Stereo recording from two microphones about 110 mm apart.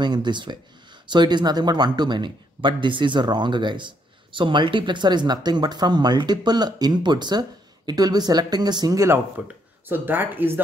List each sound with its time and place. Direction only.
0.0 s speech: 45° right (ahead or behind); by 10.6 s 20° right (ahead or behind)